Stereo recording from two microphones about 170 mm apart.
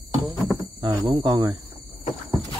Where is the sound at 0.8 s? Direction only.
25° right (ahead or behind).